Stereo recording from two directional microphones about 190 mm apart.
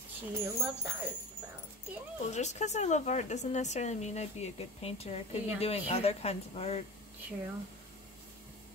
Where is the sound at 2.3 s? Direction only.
35° left (ahead or behind).